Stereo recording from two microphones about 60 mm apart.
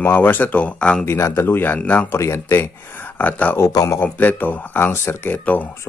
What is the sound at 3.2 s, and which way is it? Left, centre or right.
Speech, left.